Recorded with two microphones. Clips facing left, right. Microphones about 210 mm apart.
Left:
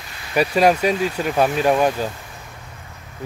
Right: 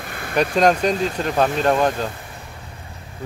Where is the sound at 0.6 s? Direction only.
5° left (ahead or behind).